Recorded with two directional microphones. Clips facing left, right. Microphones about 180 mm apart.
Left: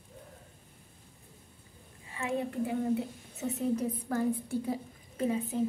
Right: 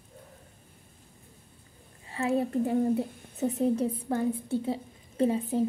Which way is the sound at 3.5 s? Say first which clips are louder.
Right 3 dB; 30° right (ahead or behind).